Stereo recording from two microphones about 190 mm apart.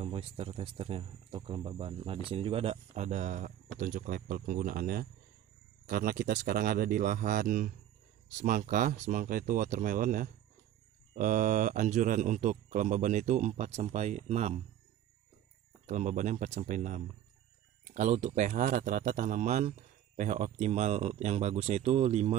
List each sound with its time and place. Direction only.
0.0 s speech: 30° right (ahead or behind)
15.9 s speech: 40° right (ahead or behind)